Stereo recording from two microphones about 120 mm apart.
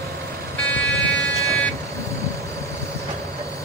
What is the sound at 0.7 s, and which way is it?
Vehicle, 10° left (ahead or behind).